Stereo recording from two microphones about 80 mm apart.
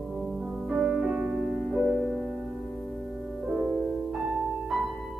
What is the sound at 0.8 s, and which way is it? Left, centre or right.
Music, centre.